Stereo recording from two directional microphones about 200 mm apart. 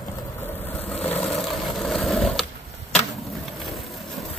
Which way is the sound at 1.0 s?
5° left (ahead or behind).